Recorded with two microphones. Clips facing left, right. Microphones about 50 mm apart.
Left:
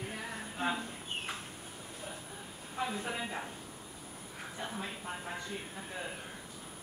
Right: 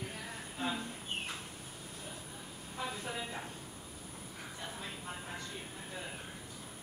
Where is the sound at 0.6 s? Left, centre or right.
Left.